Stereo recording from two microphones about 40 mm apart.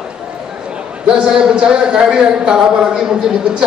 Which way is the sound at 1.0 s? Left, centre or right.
Right.